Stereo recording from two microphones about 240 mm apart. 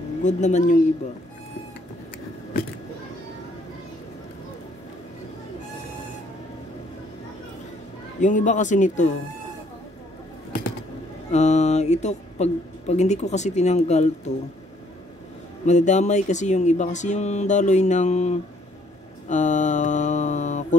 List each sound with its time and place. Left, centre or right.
0.2 s speech: left
8.2 s speech: left
11.3 s speech: left
15.6 s speech: left
19.2 s a sound: left